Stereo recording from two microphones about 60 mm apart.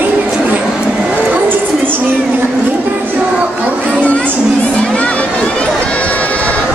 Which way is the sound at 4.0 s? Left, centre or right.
Centre.